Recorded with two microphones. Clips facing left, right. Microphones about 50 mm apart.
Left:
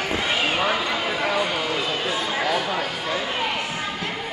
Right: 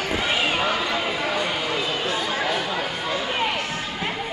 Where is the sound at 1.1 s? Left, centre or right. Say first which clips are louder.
Left 2 dB; left.